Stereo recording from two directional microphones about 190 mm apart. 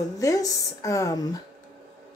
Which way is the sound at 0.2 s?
20° left (ahead or behind).